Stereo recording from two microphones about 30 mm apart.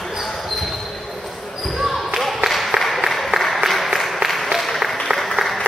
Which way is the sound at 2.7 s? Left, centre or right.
Centre.